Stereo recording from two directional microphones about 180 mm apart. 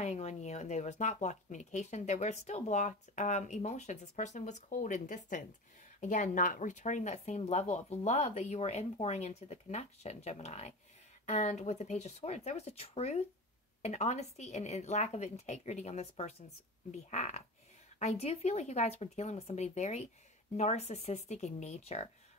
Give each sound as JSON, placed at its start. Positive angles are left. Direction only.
{"t": 0.0, "sound": "speech", "side_deg": 40}